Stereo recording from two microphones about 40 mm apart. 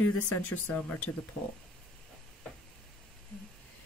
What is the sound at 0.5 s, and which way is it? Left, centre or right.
Speech, left.